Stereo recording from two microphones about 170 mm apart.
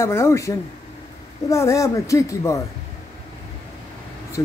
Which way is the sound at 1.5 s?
20° left (ahead or behind).